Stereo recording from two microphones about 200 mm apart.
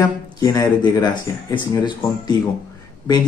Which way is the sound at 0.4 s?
20° left (ahead or behind).